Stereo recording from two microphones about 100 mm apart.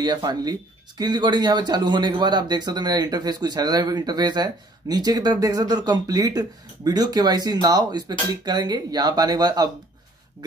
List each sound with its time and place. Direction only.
0.0 s speech: 45° right (ahead or behind)